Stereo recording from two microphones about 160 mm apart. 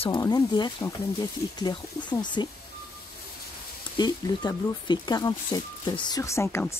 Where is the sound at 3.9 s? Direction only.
25° left (ahead or behind).